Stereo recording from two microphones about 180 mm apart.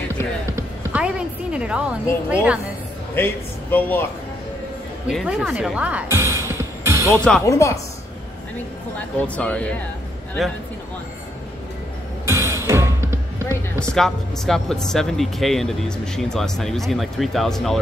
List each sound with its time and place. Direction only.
0.6 s music: 5° right (ahead or behind)
3.2 s speech: 10° left (ahead or behind)
5.0 s speech: centre (ahead or behind); by 7.2 s 15° right (ahead or behind)
7.4 s speech: 15° left (ahead or behind)
8.9 s speech: 5° left (ahead or behind)
12.3 s music: 15° right (ahead or behind)
13.9 s speech: centre (ahead or behind)